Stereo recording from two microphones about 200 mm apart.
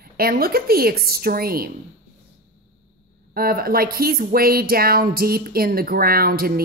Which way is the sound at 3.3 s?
50° right (ahead or behind).